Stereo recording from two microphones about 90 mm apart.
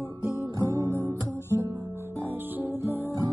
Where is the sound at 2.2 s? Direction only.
20° right (ahead or behind).